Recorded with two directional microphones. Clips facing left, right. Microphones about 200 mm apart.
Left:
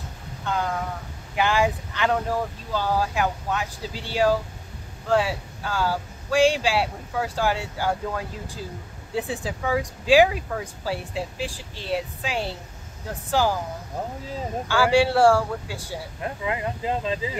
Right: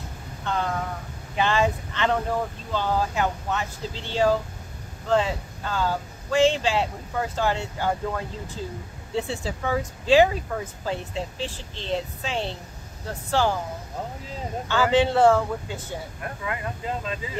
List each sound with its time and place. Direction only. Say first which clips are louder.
0.5 s a sound: even; 5° left (ahead or behind)
1.3 s speech: left 1 dB; 10° left (ahead or behind)
9.1 s speech: even; 15° left (ahead or behind)
14.7 s speech: left 1 dB; 10° left (ahead or behind)
16.2 s speech: left 7 dB; 25° left (ahead or behind)